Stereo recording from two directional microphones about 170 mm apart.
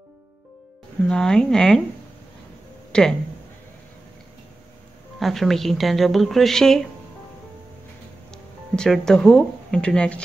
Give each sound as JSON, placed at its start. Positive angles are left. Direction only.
{"t": 1.0, "sound": "speech", "side_deg": 5}
{"t": 2.9, "sound": "speech", "side_deg": 5}
{"t": 5.2, "sound": "speech", "side_deg": 0}
{"t": 8.3, "sound": "speech", "side_deg": 5}